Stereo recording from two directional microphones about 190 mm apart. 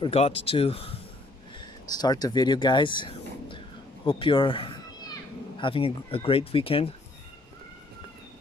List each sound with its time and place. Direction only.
0.0 s speech: 30° left (ahead or behind)